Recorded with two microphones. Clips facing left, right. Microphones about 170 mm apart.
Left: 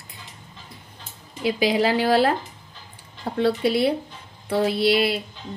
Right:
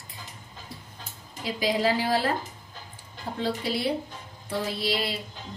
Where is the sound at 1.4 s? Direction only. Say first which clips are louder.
Left 5 dB; 70° left (ahead or behind).